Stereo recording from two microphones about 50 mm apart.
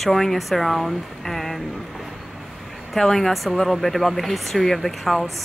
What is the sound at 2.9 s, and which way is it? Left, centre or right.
Speech, centre.